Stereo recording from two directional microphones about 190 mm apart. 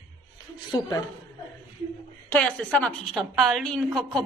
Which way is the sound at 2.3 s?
5° left (ahead or behind).